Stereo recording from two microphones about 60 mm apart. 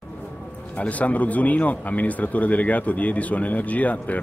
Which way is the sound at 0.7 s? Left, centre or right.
Left.